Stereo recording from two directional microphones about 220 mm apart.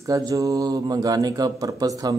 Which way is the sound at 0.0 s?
15° right (ahead or behind).